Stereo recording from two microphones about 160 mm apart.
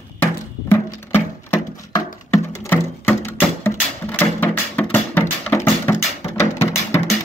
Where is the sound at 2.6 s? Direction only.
15° left (ahead or behind).